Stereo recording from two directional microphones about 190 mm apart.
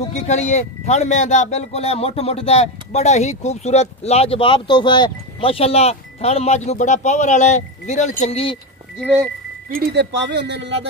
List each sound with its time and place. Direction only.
0.1 s speech: 35° left (ahead or behind)
8.9 s speech: 5° right (ahead or behind)
9.7 s speech: 55° right (ahead or behind)